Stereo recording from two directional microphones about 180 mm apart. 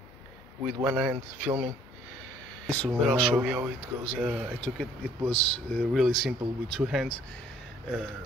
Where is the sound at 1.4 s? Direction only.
30° right (ahead or behind).